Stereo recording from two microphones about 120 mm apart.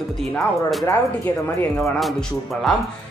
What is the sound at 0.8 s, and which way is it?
Speech, 20° left (ahead or behind).